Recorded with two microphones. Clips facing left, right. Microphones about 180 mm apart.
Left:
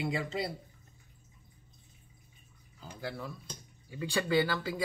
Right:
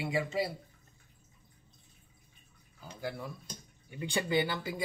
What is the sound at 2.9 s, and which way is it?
Speech, 20° right (ahead or behind).